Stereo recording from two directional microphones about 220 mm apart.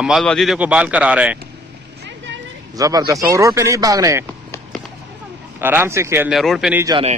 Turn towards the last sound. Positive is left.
turn(degrees=-25)  # may be behind; listen again after turning